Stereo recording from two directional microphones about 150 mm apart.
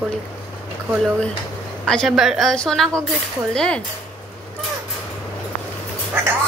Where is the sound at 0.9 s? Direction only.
Centre (ahead or behind).